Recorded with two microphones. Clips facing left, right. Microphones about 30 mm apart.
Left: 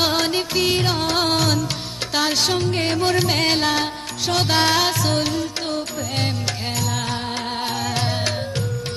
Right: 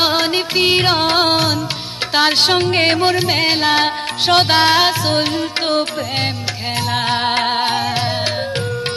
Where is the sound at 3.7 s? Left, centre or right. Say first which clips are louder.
Right 7 dB; right.